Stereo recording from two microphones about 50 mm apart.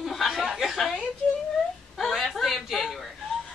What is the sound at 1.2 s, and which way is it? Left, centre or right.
Speech, left.